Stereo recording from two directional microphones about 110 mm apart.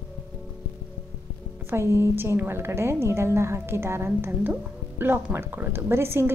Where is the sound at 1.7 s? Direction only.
25° right (ahead or behind).